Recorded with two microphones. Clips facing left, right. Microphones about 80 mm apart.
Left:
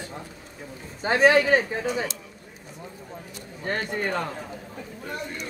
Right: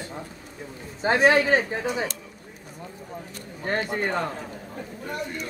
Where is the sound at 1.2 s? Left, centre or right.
Centre.